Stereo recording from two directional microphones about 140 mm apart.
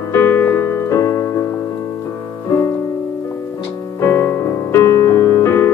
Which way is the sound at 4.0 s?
15° left (ahead or behind).